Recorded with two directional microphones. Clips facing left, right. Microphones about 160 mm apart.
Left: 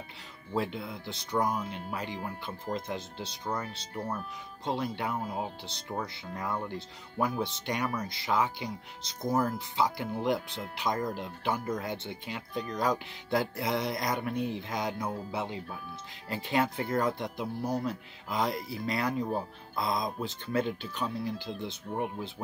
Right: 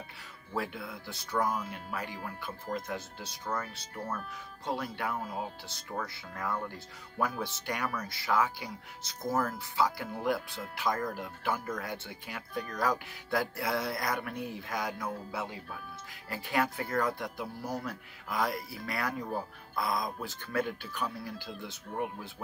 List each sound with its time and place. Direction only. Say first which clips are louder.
0.6 s speech: left 3 dB; 25° left (ahead or behind)